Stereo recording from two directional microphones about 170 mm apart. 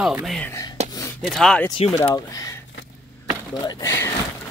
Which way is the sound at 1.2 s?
5° left (ahead or behind).